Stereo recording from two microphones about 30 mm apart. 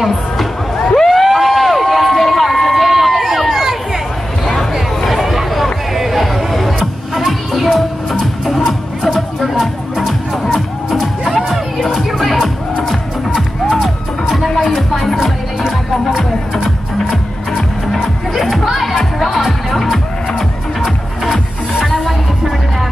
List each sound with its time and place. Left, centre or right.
1.0 s a sound: centre
1.3 s run: centre
2.1 s crowd: centre
5.1 s a sound: centre
7.2 s music: centre
8.5 s music: centre
9.1 s music: centre
13.7 s music: centre
17.9 s music: centre